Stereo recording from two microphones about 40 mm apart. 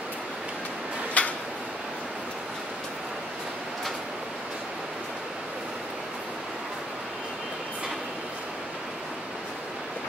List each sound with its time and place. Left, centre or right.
1.2 s tick-tock: left